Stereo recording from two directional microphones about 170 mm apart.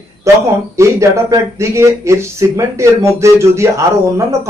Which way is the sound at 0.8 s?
15° right (ahead or behind).